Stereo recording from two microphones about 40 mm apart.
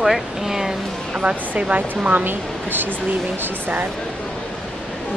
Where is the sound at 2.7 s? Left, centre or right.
Right.